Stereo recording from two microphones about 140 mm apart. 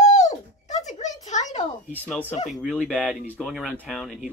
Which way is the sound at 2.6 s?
Centre (ahead or behind).